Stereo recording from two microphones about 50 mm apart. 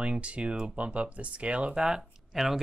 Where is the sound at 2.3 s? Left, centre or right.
Centre.